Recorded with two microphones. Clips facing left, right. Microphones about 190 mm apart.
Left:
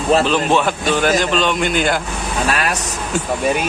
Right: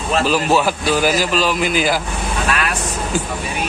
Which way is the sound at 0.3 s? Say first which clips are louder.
Even; 5° right (ahead or behind).